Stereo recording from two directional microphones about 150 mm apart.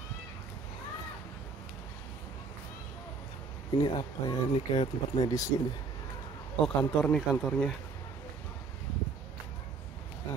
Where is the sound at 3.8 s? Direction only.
30° left (ahead or behind).